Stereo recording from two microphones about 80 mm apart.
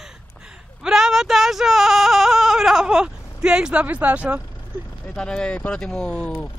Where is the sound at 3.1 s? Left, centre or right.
Left.